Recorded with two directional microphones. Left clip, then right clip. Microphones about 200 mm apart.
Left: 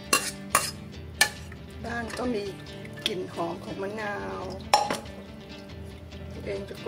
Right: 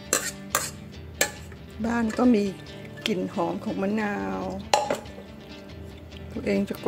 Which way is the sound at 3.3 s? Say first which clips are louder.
Right 4 dB; centre (ahead or behind).